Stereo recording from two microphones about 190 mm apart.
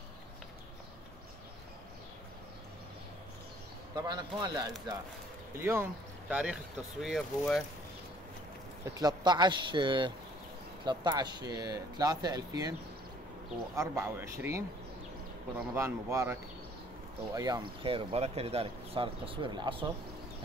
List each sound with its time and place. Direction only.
3.9 s speech: 20° right (ahead or behind); by 7.6 s centre (ahead or behind)
8.9 s speech: 20° right (ahead or behind)
13.7 s speech: 15° right (ahead or behind)